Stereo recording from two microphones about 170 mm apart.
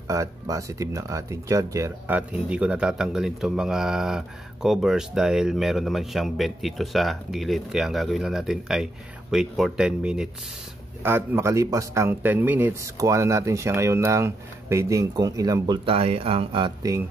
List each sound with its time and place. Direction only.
0.1 s speech: 20° right (ahead or behind)